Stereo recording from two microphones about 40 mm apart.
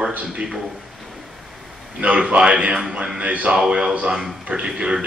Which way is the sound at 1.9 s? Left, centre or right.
Right.